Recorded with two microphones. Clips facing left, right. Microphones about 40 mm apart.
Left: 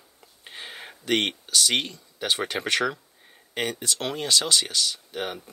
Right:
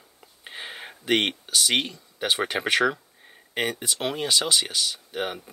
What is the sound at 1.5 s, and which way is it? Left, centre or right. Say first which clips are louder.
Speech: right 1 dB; centre.